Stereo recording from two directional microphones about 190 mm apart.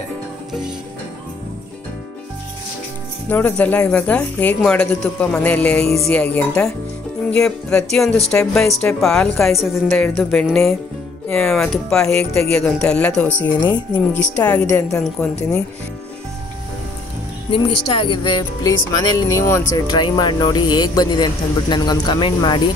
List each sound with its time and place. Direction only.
0.5 s music: 5° right (ahead or behind)
3.3 s a woman's voice: 10° left (ahead or behind)
17.5 s speech: 30° left (ahead or behind)